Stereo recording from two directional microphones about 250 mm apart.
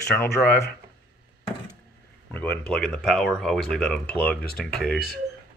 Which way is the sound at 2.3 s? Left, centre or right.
Centre.